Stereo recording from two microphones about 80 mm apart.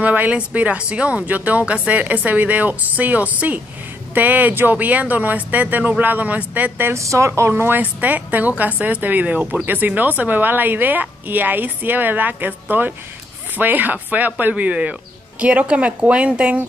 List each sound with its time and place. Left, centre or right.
0.0 s speech: centre
6.9 s speech: right; by 16.6 s centre